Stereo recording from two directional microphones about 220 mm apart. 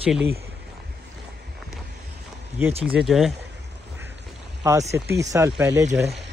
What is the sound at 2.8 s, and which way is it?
Speech, 5° right (ahead or behind).